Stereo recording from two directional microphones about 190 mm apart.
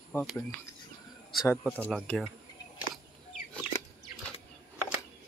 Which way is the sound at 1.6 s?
10° right (ahead or behind).